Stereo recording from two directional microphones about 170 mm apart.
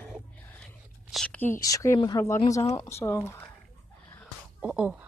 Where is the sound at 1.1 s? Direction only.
10° left (ahead or behind).